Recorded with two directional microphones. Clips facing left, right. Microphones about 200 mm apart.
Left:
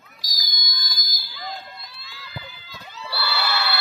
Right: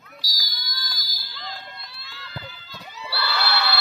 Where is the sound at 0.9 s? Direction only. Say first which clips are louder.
Even; 10° left (ahead or behind).